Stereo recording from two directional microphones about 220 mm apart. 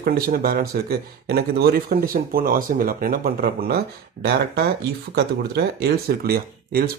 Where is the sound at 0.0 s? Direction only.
40° right (ahead or behind).